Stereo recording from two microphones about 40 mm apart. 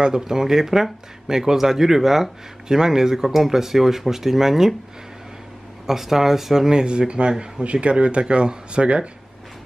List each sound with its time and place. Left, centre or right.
0.0 s speech: centre
5.9 s speech: centre; by 9.1 s right